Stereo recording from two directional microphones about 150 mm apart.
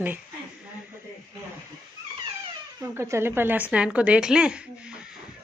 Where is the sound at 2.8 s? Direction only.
15° right (ahead or behind).